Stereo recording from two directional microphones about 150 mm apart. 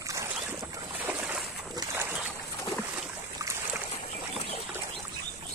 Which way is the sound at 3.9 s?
40° left (ahead or behind).